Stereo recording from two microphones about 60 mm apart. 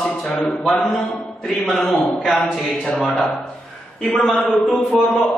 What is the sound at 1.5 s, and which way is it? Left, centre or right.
A man's voice, centre.